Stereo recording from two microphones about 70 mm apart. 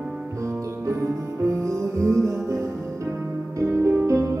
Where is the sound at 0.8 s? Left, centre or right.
Right.